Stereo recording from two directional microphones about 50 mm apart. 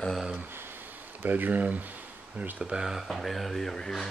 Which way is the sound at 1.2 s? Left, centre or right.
Right.